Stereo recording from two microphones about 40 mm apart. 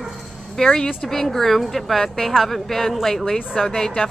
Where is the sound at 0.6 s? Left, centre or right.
Centre.